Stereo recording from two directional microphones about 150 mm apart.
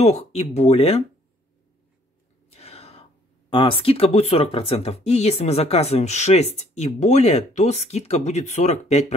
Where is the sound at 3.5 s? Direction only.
35° left (ahead or behind).